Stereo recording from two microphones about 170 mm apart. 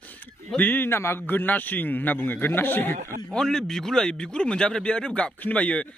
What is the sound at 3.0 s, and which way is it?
Speech, 55° right (ahead or behind).